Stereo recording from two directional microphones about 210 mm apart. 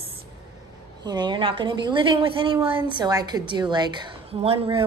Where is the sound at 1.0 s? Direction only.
20° right (ahead or behind).